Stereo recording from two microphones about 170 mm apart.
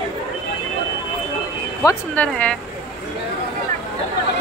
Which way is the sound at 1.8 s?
10° left (ahead or behind).